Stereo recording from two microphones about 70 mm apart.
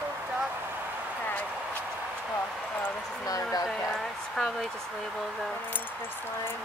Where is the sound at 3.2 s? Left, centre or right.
Left.